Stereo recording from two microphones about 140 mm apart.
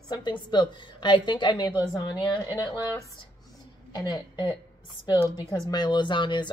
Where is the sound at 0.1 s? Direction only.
35° left (ahead or behind).